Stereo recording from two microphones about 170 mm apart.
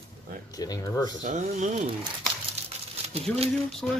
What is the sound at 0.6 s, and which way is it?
Speech, 20° left (ahead or behind).